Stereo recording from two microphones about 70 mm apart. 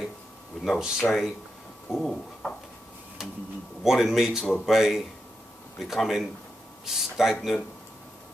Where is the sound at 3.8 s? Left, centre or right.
Centre.